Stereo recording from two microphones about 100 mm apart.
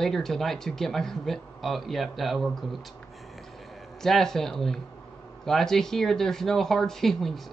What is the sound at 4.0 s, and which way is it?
Speech, 5° left (ahead or behind).